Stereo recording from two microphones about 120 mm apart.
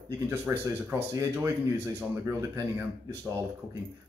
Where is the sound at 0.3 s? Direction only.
20° right (ahead or behind).